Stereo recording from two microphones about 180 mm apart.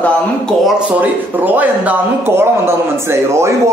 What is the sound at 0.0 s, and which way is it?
Speech, 5° left (ahead or behind).